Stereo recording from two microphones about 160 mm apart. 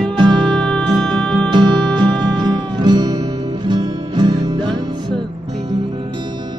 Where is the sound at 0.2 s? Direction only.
30° right (ahead or behind).